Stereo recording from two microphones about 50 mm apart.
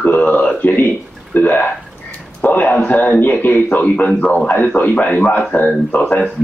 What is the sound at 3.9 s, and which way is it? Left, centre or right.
A man's voice, left.